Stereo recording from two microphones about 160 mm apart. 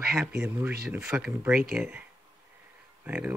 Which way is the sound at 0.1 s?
10° right (ahead or behind).